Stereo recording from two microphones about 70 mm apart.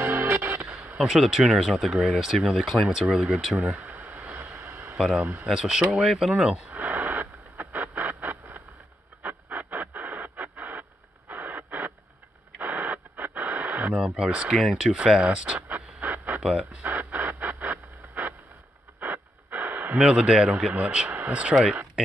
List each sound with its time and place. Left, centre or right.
0.0 s music: right
0.8 s speech: centre
3.5 s a sound: right
4.6 s a sound: right
4.9 s speech: centre
6.7 s a sound: right
9.2 s radio: right
14.0 s speech: centre
14.6 s speech: centre
15.0 s speech: centre
15.7 s a sound: right
18.9 s wheeze: right
20.0 s speech: centre